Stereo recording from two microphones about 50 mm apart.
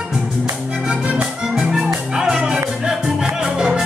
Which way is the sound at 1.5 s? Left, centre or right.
Centre.